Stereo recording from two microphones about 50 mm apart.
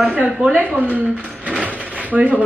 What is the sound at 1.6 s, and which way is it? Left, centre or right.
Drawer open or close, right.